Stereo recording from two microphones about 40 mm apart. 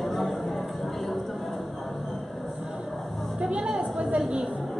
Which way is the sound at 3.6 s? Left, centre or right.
Centre.